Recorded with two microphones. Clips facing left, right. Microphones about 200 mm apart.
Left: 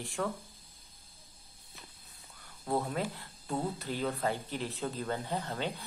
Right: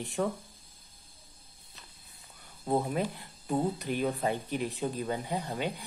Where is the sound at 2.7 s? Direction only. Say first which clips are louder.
Right 3 dB; 20° right (ahead or behind).